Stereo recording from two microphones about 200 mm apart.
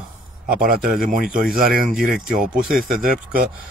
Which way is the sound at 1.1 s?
45° right (ahead or behind).